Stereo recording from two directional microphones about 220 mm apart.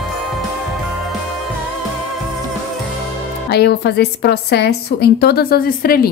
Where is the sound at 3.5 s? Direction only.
50° left (ahead or behind).